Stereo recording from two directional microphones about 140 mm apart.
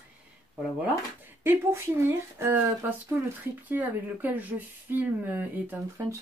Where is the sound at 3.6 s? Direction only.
15° right (ahead or behind).